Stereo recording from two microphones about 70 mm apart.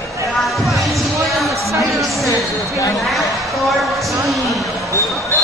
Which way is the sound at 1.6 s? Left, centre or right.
Right.